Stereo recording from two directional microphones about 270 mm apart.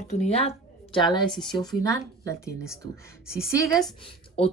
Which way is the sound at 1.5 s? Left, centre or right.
Centre.